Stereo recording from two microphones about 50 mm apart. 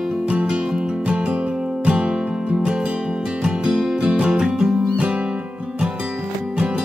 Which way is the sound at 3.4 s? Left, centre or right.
Centre.